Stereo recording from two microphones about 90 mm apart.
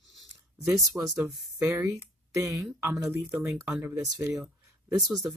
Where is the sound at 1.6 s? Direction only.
35° right (ahead or behind).